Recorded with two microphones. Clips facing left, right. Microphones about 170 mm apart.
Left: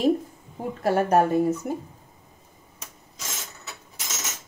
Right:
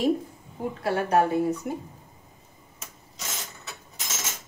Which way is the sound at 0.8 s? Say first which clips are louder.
Left 3 dB; 45° left (ahead or behind).